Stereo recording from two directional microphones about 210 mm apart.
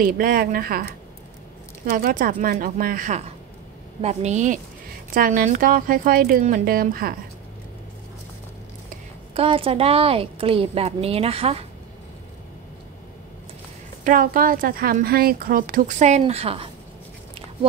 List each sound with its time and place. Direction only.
0.0 s a woman's voice: 40° right (ahead or behind)
9.3 s a woman's voice: 25° right (ahead or behind)
14.0 s speech: 40° right (ahead or behind)